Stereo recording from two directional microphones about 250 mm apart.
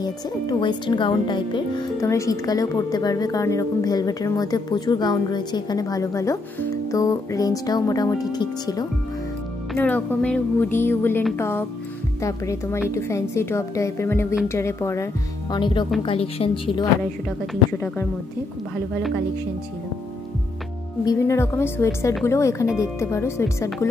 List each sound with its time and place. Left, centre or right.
0.0 s speech: centre
21.0 s speech: centre